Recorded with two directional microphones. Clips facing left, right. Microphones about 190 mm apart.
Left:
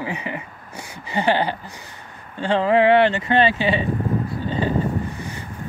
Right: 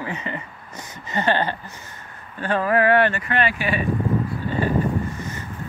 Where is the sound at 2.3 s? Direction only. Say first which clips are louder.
Left 3 dB; 20° left (ahead or behind).